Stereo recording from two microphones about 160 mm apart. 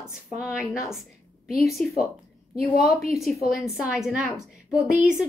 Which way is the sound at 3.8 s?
5° right (ahead or behind).